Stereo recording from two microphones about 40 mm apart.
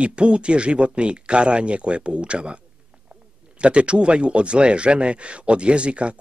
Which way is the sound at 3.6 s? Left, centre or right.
Right.